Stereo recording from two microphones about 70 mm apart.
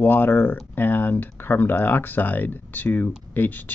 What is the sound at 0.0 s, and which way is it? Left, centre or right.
Speech, left.